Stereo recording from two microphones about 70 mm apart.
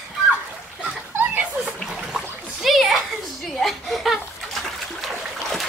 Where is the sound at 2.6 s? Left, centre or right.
Centre.